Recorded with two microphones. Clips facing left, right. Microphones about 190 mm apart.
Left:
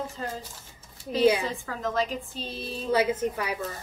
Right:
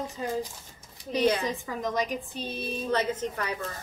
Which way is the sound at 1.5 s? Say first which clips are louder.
Right 1 dB; 15° right (ahead or behind).